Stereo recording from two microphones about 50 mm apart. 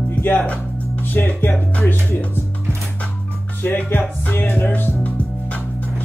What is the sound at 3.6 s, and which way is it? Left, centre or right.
Music, left.